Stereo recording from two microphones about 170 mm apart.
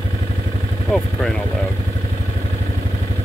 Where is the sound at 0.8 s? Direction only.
Centre (ahead or behind).